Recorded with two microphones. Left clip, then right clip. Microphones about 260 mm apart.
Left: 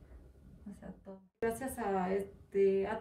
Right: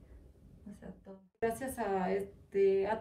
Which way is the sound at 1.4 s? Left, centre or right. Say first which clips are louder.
Right 1 dB; centre.